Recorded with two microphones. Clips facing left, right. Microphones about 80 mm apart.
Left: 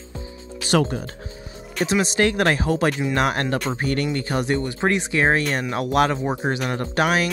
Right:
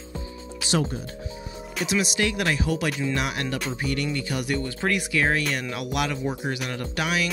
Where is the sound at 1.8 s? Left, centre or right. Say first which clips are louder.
Left 5 dB; left.